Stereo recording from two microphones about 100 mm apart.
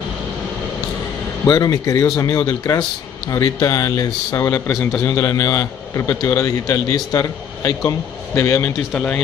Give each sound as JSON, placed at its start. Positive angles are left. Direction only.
{"t": 1.5, "sound": "a man's voice", "side_deg": 35}
{"t": 4.5, "sound": "a man's voice", "side_deg": 25}
{"t": 8.9, "sound": "speech", "side_deg": 15}